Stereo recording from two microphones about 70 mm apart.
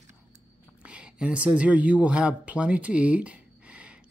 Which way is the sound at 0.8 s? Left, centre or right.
Centre.